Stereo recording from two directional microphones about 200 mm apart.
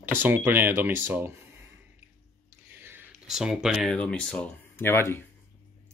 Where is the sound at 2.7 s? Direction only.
10° right (ahead or behind); by 5.2 s 10° left (ahead or behind).